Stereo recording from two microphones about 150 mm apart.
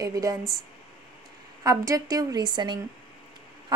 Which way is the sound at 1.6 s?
25° right (ahead or behind).